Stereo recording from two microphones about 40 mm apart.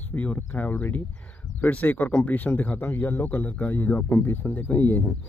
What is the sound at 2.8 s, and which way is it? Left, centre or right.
Speech, left.